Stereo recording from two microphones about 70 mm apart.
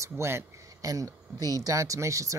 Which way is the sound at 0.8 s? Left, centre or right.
Right.